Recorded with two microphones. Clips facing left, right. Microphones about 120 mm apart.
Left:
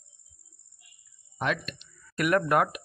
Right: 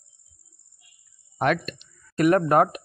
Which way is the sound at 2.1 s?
35° right (ahead or behind).